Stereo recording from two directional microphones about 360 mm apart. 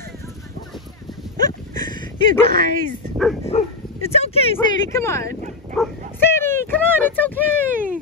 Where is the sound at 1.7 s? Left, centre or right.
Centre.